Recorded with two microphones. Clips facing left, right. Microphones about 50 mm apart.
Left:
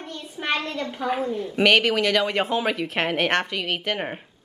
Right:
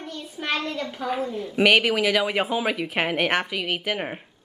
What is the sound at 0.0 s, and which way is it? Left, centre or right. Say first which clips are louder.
A child's voice: left 1 dB; centre.